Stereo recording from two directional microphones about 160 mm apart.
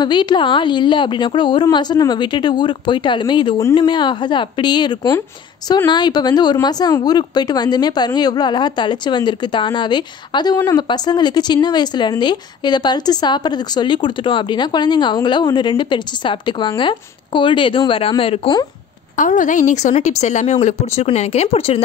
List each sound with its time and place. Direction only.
0.0 s speech: 30° left (ahead or behind)
19.1 s a woman's voice: 55° left (ahead or behind); by 21.8 s 40° left (ahead or behind)